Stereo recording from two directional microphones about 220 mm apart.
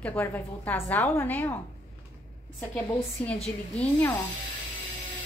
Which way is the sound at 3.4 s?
5° left (ahead or behind).